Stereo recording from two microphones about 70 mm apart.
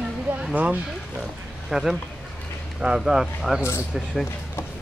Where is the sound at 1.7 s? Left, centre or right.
Centre.